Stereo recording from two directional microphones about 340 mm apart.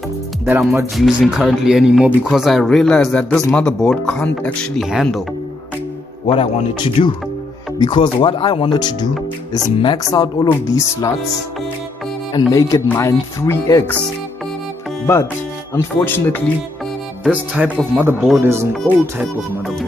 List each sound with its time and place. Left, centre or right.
0.5 s speech: centre
6.2 s speech: centre
12.4 s speech: centre
15.7 s speech: centre